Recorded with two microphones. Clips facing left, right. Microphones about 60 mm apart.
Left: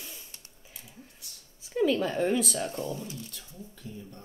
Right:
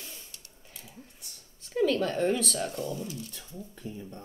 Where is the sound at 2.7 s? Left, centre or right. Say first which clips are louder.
Even; left.